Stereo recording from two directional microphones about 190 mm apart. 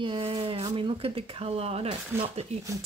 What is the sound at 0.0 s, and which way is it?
Speech, 25° right (ahead or behind).